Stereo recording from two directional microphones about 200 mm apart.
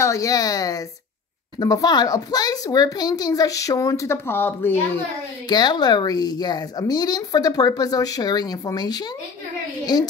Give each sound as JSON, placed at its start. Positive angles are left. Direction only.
{"t": 0.0, "sound": "a child's voice", "side_deg": 15}
{"t": 5.5, "sound": "a woman's voice", "side_deg": 20}